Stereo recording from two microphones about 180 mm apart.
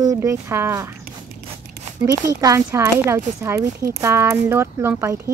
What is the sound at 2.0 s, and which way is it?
Speech, 20° right (ahead or behind).